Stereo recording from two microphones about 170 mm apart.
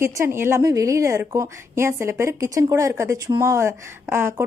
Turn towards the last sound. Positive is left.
turn(degrees=-15)  # may be behind; listen again after turning